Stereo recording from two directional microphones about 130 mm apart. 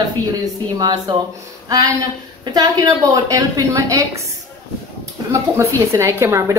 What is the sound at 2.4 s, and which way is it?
Speech, 30° right (ahead or behind).